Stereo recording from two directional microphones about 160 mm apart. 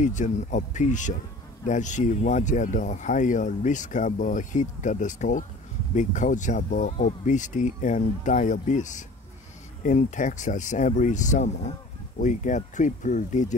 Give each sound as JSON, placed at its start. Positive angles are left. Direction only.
{"t": 0.0, "sound": "speech", "side_deg": 50}